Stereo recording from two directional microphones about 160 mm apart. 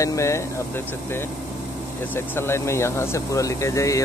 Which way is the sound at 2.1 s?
15° left (ahead or behind).